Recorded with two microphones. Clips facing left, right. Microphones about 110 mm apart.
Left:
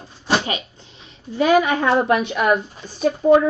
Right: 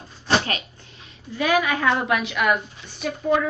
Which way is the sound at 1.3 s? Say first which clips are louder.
Left 5 dB; 30° left (ahead or behind).